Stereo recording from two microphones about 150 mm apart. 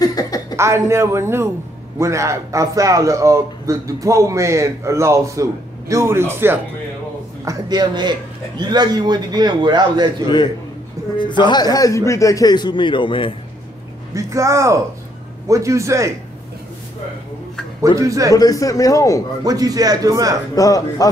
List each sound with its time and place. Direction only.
0.0 s chuckle: 25° left (ahead or behind)
0.6 s a man's voice: 20° right (ahead or behind)
7.4 s a man's voice: 25° right (ahead or behind)
11.1 s a man's voice: 30° left (ahead or behind)
14.1 s a man's voice: 20° right (ahead or behind)
17.9 s a man's voice: 20° right (ahead or behind)
18.3 s a man's voice: 25° left (ahead or behind)
19.4 s a man's voice: 25° right (ahead or behind)
20.5 s a man's voice: 25° left (ahead or behind)